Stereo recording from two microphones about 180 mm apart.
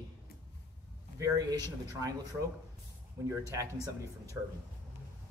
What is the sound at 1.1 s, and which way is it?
Speech, 20° right (ahead or behind).